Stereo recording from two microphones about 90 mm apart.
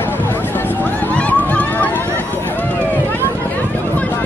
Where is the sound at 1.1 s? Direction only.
15° left (ahead or behind).